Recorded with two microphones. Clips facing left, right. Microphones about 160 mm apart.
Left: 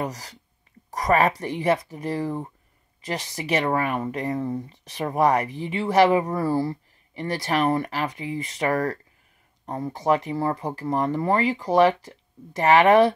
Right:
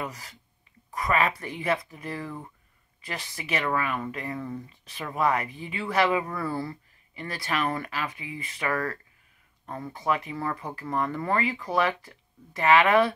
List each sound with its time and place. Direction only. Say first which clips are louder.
0.0 s speech: left 6 dB; 40° left (ahead or behind)